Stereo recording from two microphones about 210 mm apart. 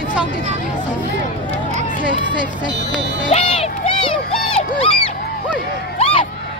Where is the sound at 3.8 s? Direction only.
25° left (ahead or behind).